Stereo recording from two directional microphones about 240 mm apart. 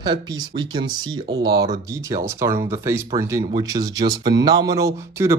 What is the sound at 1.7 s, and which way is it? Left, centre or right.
Speech, centre.